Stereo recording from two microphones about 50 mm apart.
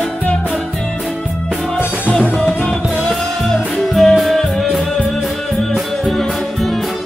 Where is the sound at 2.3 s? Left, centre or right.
Centre.